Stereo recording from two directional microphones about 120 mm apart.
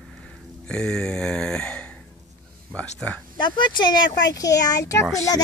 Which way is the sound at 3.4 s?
40° left (ahead or behind).